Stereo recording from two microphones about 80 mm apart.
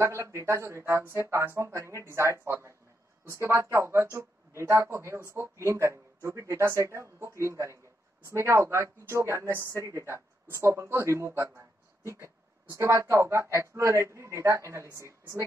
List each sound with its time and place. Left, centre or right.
0.0 s a woman's voice: right